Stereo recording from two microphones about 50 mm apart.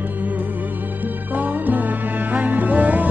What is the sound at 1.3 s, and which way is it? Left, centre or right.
Music, right.